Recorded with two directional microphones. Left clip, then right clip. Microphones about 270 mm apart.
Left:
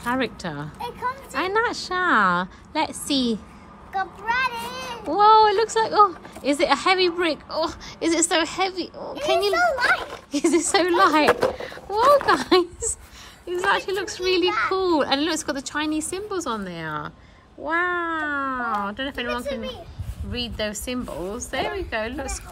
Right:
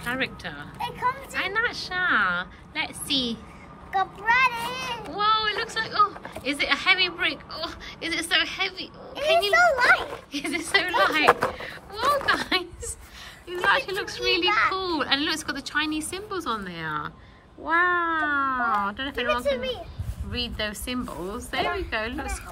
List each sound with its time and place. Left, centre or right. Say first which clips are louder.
0.0 s a woman's voice: left 3 dB; centre
0.7 s speech: right 3 dB; centre
1.4 s a woman's voice: left 4 dB; centre
3.9 s speech: right 2 dB; centre
5.1 s a woman's voice: left 9 dB; centre
9.1 s speech: right 1 dB; centre
10.3 s a woman's voice: left 5 dB; centre
11.2 s speech: left 1 dB; centre
11.5 s a woman's voice: left 9 dB; centre